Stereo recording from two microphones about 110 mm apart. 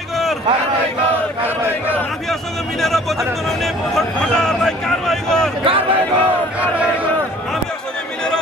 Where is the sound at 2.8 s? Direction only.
Centre (ahead or behind).